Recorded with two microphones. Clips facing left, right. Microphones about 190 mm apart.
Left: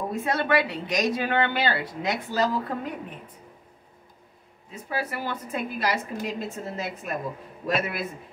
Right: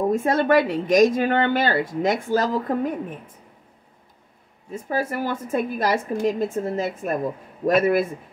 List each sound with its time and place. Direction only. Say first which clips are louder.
0.1 s a woman's voice: right 4 dB; 45° right (ahead or behind)
4.6 s a woman's voice: right 6 dB; 45° right (ahead or behind)